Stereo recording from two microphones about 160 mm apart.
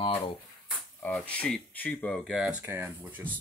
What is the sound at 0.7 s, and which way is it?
Speech, 10° left (ahead or behind).